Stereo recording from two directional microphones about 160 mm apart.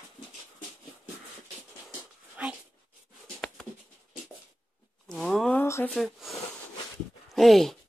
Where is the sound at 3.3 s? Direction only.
5° left (ahead or behind).